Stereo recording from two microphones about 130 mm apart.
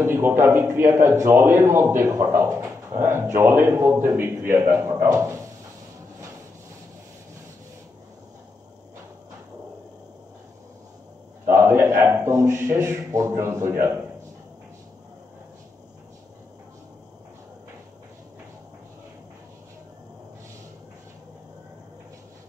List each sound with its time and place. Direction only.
0.0 s speech: 15° right (ahead or behind)
11.4 s a man's voice: 20° right (ahead or behind)